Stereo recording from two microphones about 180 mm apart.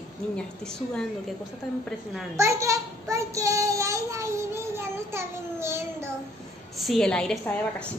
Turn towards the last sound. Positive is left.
turn(degrees=5)  # may be behind; listen again after turning